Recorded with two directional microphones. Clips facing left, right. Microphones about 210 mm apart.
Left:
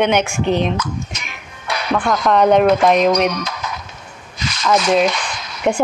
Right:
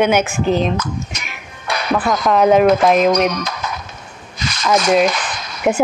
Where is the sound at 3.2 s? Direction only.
45° right (ahead or behind).